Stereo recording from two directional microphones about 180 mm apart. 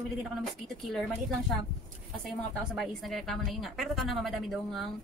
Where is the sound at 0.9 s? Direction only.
Centre (ahead or behind).